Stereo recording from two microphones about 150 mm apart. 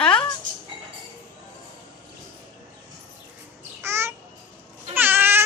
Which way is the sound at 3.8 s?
15° right (ahead or behind).